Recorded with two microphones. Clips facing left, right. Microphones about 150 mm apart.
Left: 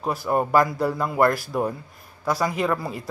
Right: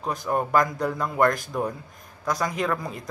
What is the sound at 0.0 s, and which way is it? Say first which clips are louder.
Speech: left 3 dB; 5° left (ahead or behind).